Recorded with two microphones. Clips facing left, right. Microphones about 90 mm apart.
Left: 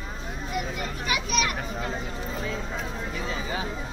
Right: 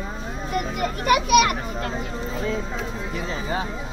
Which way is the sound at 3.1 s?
35° right (ahead or behind).